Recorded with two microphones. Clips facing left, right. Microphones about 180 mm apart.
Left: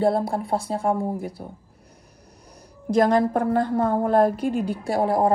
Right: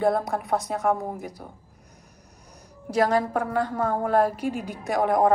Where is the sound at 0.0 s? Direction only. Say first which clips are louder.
Left 2 dB; 30° left (ahead or behind).